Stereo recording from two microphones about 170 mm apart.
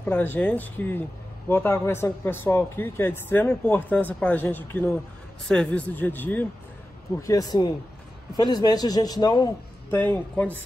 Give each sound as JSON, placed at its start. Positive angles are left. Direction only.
{"t": 0.0, "sound": "speech", "side_deg": 10}
{"t": 7.2, "sound": "a man's voice", "side_deg": 20}
{"t": 9.8, "sound": "speech", "side_deg": 15}